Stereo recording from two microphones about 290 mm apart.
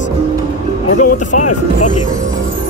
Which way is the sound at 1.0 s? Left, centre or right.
Left.